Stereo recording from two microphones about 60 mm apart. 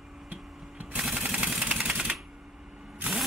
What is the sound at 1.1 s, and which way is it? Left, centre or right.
Machine gun, centre.